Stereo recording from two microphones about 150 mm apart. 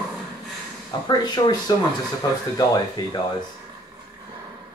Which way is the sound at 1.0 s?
25° left (ahead or behind).